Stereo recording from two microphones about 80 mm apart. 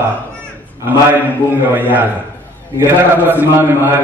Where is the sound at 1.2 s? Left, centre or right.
Right.